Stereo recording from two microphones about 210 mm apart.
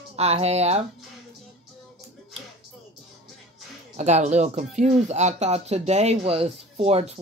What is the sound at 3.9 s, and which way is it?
Speech, 30° right (ahead or behind).